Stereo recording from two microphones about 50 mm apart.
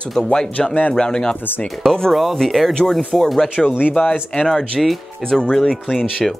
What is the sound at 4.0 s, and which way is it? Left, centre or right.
Speech, left.